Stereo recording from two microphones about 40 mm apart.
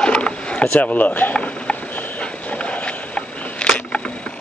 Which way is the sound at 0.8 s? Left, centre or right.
Left.